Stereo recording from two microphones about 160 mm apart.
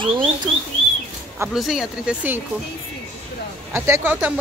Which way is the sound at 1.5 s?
5° right (ahead or behind).